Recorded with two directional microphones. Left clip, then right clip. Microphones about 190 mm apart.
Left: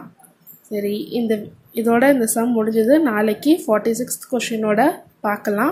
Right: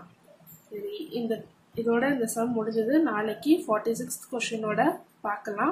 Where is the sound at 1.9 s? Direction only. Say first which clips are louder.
Left 11 dB; 35° left (ahead or behind).